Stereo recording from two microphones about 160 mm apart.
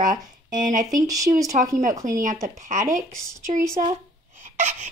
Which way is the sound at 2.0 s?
55° right (ahead or behind).